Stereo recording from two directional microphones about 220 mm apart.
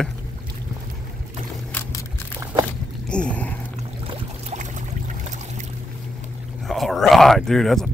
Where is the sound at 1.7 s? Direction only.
10° left (ahead or behind).